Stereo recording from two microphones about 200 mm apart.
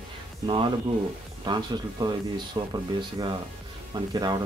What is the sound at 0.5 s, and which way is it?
Speech, 25° right (ahead or behind).